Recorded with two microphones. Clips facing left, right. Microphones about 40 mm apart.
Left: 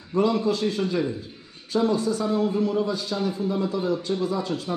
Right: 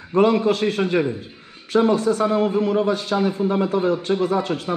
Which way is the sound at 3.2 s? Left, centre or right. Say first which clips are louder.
Right 6 dB; right.